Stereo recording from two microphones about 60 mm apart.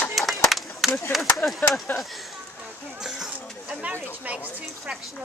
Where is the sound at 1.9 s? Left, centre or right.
Left.